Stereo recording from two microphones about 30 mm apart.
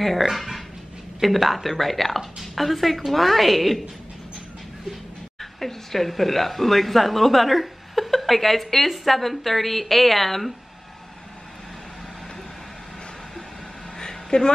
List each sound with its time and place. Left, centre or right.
0.2 s a woman's voice: centre
5.4 s a woman's voice: centre
13.9 s a sound: left